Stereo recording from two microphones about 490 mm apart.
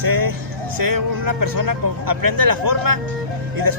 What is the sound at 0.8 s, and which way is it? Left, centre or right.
Speech, right.